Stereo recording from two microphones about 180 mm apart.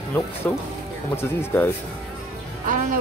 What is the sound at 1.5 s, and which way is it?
Speech, 10° left (ahead or behind).